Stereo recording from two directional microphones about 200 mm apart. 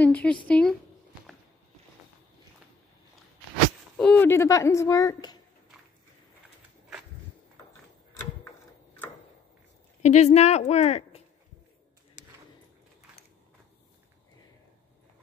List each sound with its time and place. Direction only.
0.0 s a woman's voice: 5° left (ahead or behind)
3.9 s speech: 5° left (ahead or behind)
10.0 s a woman's voice: 35° left (ahead or behind)